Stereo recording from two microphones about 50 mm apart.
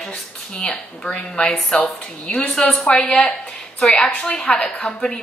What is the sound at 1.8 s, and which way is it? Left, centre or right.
Speech, left.